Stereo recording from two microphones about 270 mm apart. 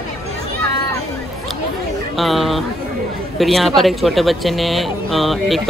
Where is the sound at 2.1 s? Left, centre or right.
Centre.